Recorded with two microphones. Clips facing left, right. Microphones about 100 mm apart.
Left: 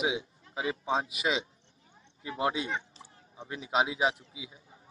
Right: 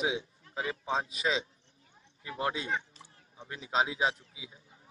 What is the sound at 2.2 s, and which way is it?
A man's voice, 20° left (ahead or behind).